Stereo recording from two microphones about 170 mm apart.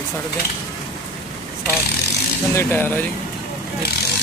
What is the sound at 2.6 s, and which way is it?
Speech, 10° left (ahead or behind).